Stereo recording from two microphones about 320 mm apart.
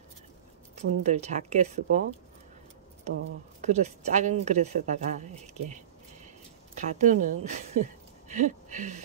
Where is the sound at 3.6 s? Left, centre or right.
Right.